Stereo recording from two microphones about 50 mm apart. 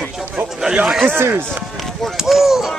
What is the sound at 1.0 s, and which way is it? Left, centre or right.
Speech, right.